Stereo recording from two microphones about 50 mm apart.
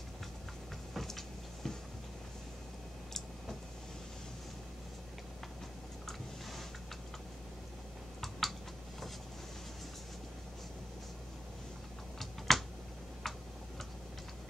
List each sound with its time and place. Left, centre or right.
0.9 s vehicle: centre
3.1 s a sound: centre
8.2 s typing: centre
12.2 s typing: centre
13.2 s tick-tock: centre